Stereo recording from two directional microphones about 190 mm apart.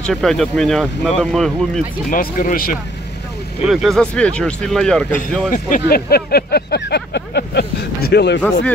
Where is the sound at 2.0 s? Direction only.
45° left (ahead or behind).